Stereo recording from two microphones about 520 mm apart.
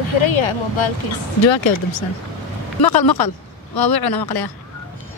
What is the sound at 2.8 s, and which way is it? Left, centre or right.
Speech, left.